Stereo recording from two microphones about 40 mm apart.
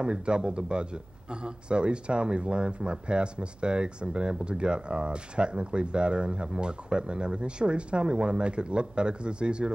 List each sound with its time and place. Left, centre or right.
0.0 s speech: right